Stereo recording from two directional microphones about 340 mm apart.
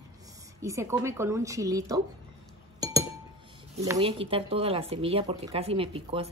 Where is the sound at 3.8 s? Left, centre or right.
Centre.